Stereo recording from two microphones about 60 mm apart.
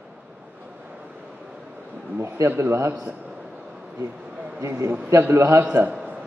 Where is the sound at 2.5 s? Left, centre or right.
Right.